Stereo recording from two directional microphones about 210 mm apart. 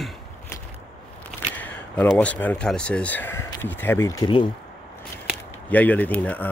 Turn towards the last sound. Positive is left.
turn(degrees=5)  # may be behind; listen again after turning